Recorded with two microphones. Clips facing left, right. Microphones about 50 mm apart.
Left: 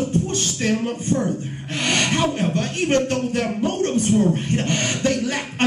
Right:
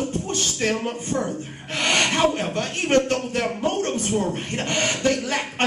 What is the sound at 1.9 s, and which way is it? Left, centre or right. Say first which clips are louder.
Speech: right 1 dB; right.